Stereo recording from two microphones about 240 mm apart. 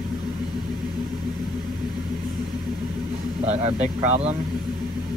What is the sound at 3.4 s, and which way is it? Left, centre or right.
Speech, right.